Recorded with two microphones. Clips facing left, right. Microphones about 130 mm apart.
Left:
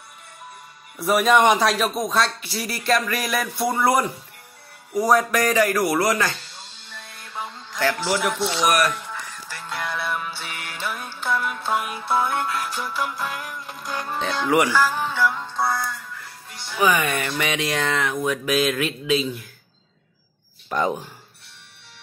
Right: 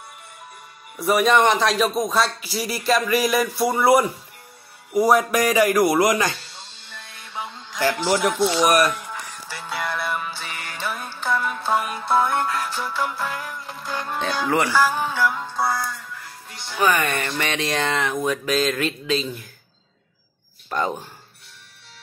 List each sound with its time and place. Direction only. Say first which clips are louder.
0.9 s speech: even; centre (ahead or behind)
1.4 s a man's voice: left 1 dB; 15° left (ahead or behind)
1.7 s speech: right 2 dB; centre (ahead or behind); by 6.3 s 15° right (ahead or behind)
6.9 s music: left 1 dB; centre (ahead or behind)
8.2 s speech: right 4 dB; centre (ahead or behind)
8.8 s music: right 1 dB; 10° right (ahead or behind)
9.6 s music: right 2 dB; 5° right (ahead or behind); by 13.8 s 10° left (ahead or behind)
13.9 s speech: right 1 dB; 5° left (ahead or behind)
14.7 s music: right 1 dB; 15° right (ahead or behind)
16.7 s speech: even; 5° left (ahead or behind)
20.7 s speech: left 1 dB; 5° left (ahead or behind)